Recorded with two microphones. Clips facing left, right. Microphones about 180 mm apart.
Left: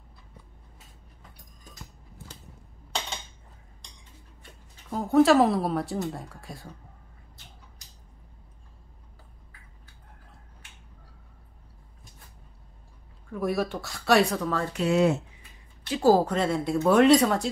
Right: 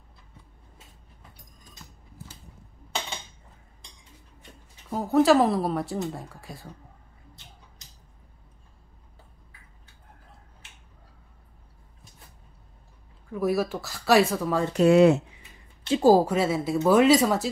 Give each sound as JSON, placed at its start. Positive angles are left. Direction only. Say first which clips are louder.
{"t": 4.8, "sound": "speech", "louder": "even", "side_deg": 0}
{"t": 13.3, "sound": "speech", "louder": "right 2 dB", "side_deg": 0}
{"t": 14.9, "sound": "speech", "louder": "right 6 dB", "side_deg": -70}
{"t": 15.9, "sound": "speech", "louder": "right 2 dB", "side_deg": -15}